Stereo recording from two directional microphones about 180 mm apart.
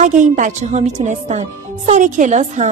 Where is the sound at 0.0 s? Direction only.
45° right (ahead or behind).